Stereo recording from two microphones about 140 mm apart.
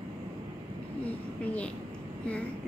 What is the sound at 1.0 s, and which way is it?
Speech, 10° left (ahead or behind).